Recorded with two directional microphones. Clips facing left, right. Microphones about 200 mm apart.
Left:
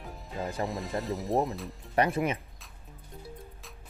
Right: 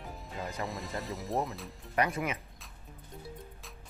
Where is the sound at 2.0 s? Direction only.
30° left (ahead or behind).